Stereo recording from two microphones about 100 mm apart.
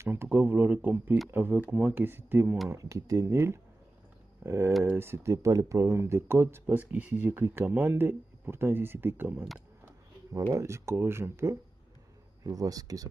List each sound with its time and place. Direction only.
0.0 s speech: 20° right (ahead or behind)
2.7 s speech: 35° right (ahead or behind)
12.4 s speech: 40° right (ahead or behind)